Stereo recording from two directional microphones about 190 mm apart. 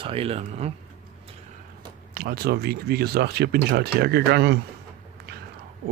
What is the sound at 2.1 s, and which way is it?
Speech, 55° right (ahead or behind).